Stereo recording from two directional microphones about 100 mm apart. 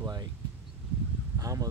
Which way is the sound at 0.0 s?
40° right (ahead or behind).